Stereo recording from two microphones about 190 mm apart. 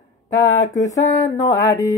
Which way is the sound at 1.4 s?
20° left (ahead or behind).